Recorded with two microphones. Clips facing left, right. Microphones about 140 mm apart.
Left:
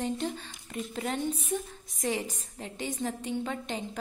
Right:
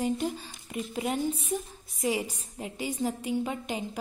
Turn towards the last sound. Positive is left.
turn(degrees=-10)  # may be behind; listen again after turning